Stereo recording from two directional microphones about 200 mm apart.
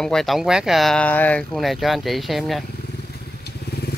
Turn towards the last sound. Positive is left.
turn(degrees=55)  # may be behind; listen again after turning